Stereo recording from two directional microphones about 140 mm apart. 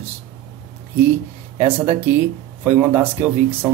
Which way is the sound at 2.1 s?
15° right (ahead or behind).